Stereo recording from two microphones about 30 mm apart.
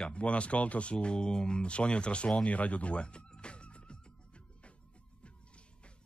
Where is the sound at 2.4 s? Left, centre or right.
Left.